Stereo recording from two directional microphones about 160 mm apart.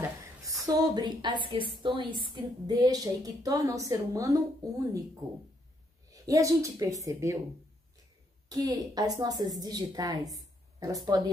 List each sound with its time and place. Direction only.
0.7 s a woman's voice: 25° right (ahead or behind)
6.2 s a woman's voice: 20° right (ahead or behind)
8.5 s a woman's voice: 25° right (ahead or behind)